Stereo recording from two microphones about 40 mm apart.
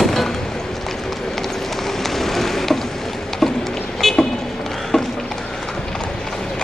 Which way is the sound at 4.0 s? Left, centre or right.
Centre.